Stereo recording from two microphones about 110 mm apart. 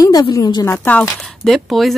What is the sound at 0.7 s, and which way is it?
Speech, 15° left (ahead or behind).